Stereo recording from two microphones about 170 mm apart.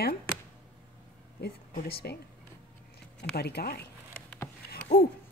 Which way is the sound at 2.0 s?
65° left (ahead or behind).